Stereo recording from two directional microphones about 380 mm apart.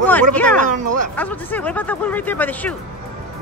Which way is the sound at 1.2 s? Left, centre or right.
Centre.